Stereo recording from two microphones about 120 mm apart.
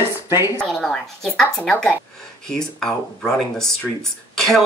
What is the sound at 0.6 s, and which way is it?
A woman's voice, 5° left (ahead or behind).